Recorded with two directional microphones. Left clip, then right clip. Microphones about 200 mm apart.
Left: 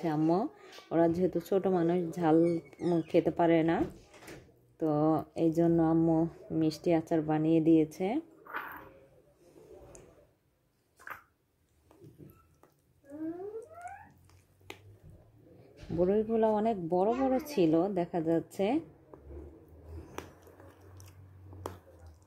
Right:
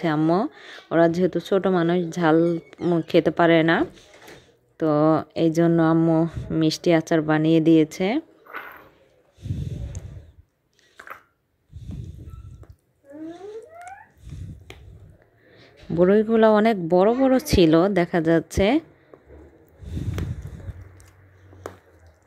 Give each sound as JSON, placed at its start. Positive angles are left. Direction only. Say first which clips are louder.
{"t": 0.0, "sound": "speech", "louder": "right 8 dB", "side_deg": -15}
{"t": 16.0, "sound": "speech", "louder": "right 11 dB", "side_deg": -25}